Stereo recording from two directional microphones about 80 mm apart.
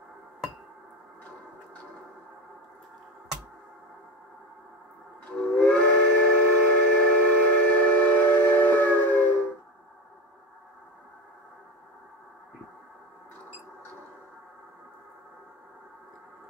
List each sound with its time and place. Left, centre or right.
5.2 s steam whistle: centre